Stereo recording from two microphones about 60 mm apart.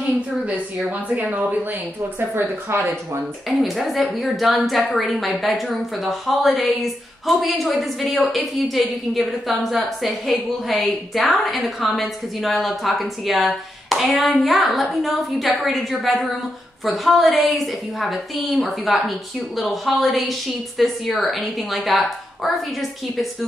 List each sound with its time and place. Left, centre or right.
0.8 s a woman's voice: right
2.7 s speech: right
3.4 s a woman's voice: centre